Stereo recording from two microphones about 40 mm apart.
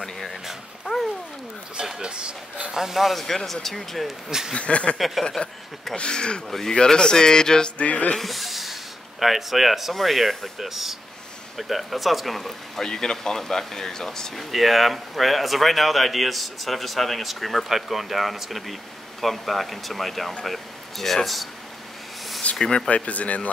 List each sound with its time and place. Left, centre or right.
0.0 s dog: centre
0.9 s cat: right
2.0 s speech: right
2.7 s speech: centre
4.6 s speech: left
4.9 s speech: centre
5.9 s speech: left
7.7 s speech: left
8.2 s speech: centre
12.8 s speech: centre
22.6 s speech: centre
22.8 s speech: left